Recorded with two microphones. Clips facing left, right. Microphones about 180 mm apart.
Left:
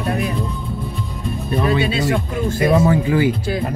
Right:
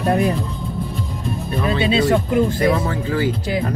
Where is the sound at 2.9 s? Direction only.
15° left (ahead or behind).